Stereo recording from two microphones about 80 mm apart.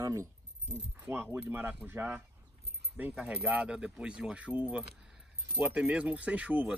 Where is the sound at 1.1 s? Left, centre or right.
Right.